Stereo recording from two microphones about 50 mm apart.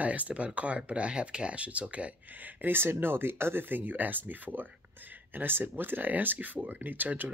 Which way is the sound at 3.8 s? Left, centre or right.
Right.